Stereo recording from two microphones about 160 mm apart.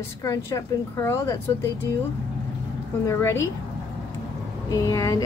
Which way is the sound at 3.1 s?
15° left (ahead or behind).